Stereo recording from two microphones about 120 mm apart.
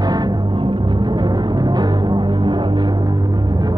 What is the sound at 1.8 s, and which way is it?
Music, 40° right (ahead or behind).